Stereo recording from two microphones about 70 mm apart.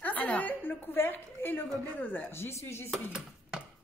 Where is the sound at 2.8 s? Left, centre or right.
Centre.